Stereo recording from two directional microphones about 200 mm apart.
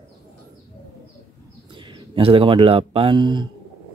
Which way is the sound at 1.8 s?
25° right (ahead or behind).